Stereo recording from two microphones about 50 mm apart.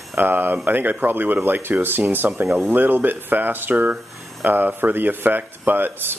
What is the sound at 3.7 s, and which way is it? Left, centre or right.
Speech, right.